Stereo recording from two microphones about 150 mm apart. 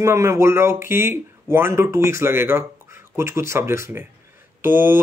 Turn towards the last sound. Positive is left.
turn(degrees=-15)  # may be behind; listen again after turning